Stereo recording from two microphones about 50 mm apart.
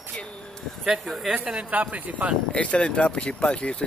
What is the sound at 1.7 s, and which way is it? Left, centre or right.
Speech, right.